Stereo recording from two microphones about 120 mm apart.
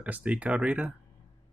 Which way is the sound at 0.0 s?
10° right (ahead or behind).